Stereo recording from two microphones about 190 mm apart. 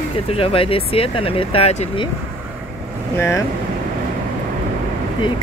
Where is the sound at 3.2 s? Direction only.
15° left (ahead or behind).